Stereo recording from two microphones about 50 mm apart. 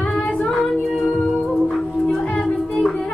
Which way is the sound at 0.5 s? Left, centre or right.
Centre.